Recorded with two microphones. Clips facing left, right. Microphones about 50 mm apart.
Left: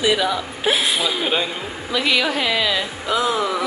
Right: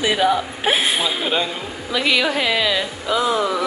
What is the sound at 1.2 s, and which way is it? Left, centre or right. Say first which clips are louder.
Speech: even; centre.